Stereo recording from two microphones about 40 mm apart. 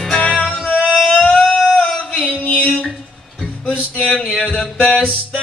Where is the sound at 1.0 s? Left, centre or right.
Centre.